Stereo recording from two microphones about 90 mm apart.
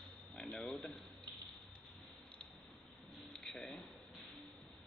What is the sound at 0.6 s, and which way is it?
Speech, centre (ahead or behind).